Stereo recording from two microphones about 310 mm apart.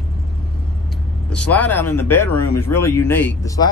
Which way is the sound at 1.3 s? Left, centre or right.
Centre.